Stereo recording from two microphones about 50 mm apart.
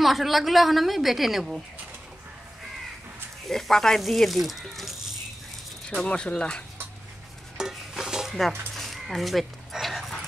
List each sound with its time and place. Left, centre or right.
0.0 s a woman's voice: centre
3.4 s a woman's voice: centre
6.0 s speech: centre
7.5 s stir: centre
8.4 s a sound: centre
9.1 s dog: centre